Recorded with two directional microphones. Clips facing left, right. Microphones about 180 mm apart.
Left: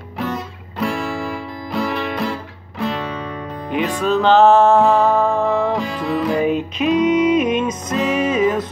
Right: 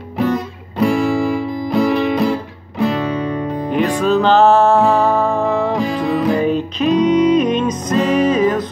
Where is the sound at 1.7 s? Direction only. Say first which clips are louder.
Right 7 dB; 15° right (ahead or behind).